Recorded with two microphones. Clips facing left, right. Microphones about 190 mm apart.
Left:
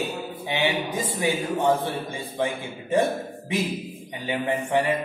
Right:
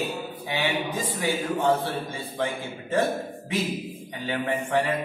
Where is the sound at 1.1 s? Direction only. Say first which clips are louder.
Left 2 dB; 15° left (ahead or behind).